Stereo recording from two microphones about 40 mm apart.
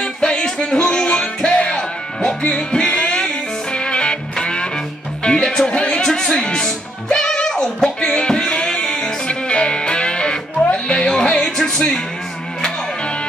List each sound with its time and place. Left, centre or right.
0.0 s music: left
5.4 s music: centre
5.7 s music: left
6.0 s music: centre
8.0 s music: left